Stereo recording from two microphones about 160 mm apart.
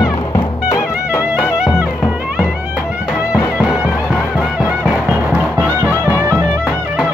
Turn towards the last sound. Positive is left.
turn(degrees=-10)  # may be behind; listen again after turning